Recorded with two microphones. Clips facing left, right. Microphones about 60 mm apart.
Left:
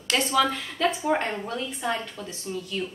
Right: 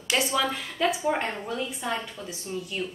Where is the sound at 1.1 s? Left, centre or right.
Centre.